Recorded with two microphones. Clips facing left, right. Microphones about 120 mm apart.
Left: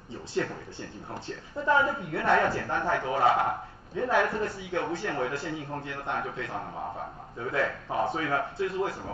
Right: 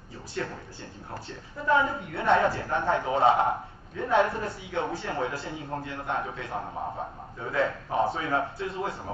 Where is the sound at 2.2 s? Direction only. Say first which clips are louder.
Right 2 dB; 25° right (ahead or behind).